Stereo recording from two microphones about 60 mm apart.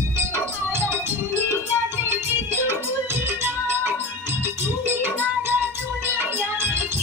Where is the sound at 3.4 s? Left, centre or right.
Right.